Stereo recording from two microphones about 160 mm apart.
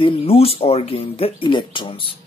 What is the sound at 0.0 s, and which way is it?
Speech, 35° left (ahead or behind).